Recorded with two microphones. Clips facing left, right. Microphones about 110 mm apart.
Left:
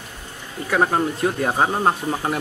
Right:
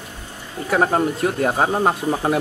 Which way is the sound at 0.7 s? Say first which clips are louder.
Right 2 dB; centre (ahead or behind).